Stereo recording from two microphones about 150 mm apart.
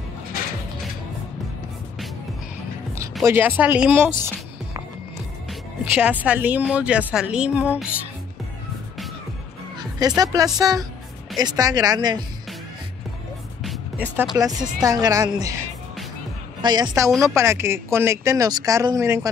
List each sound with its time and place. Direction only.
3.3 s speech: 15° right (ahead or behind)
5.5 s speech: 10° right (ahead or behind)
9.8 s a woman's voice: 25° right (ahead or behind)
13.6 s music: centre (ahead or behind)
14.3 s speech: 20° right (ahead or behind)
16.6 s speech: 30° right (ahead or behind)